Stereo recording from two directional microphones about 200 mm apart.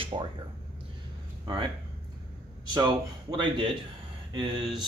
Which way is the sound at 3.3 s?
25° right (ahead or behind).